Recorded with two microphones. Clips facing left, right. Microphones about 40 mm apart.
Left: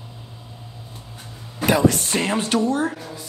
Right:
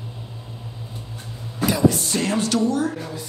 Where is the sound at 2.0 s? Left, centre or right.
Left.